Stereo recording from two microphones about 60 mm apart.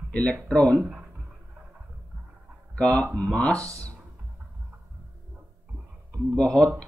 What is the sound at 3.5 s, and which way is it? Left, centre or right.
Speech, right.